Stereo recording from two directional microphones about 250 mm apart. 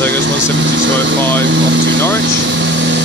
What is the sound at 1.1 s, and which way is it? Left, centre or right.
Vehicle, centre.